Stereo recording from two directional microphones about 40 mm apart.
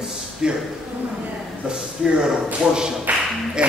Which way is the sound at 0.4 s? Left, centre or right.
Centre.